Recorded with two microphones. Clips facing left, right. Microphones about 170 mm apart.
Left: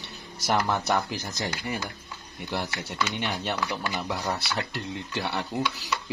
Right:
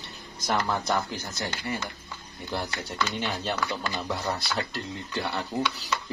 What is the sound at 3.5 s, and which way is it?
Speech, 15° left (ahead or behind).